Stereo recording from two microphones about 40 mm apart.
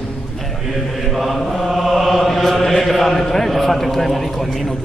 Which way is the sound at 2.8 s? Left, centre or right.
Centre.